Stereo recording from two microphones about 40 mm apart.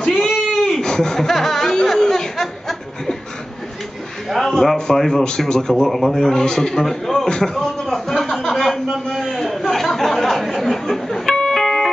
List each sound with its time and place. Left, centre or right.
0.1 s a sound: centre
0.6 s speech: centre
4.3 s a man's voice: centre
5.9 s a man's voice: centre
7.2 s a sound: centre
9.0 s chatter: centre
11.4 s music: centre